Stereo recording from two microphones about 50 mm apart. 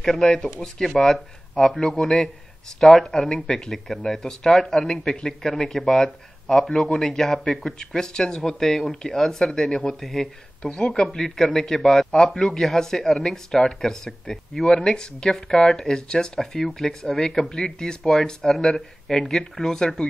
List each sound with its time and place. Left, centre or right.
0.0 s a man's voice: centre